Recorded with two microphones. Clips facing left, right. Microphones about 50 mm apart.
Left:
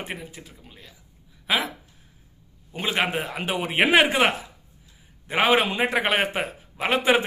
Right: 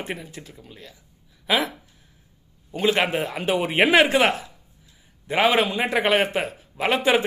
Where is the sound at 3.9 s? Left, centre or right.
Centre.